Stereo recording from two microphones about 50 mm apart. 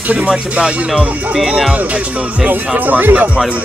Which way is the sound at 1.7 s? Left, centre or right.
Right.